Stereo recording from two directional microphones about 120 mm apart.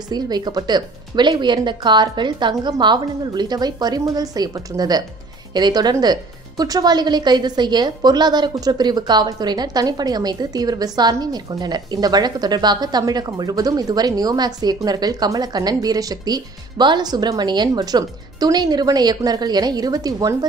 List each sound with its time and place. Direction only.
0.1 s a woman's voice: 35° right (ahead or behind)